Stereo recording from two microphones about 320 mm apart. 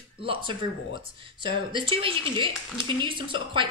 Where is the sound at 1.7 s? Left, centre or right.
Centre.